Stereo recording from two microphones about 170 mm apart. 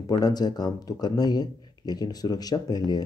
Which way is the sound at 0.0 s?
25° left (ahead or behind).